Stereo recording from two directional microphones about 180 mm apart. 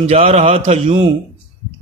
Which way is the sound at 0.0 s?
40° right (ahead or behind).